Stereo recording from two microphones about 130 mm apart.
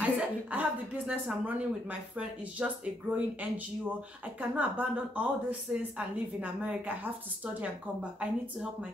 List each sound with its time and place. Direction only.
0.0 s a woman's voice: 10° right (ahead or behind)